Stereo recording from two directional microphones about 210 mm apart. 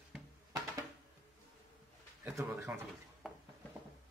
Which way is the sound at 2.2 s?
10° right (ahead or behind).